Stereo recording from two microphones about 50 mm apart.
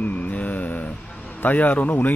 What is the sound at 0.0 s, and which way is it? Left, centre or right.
Mantra, left.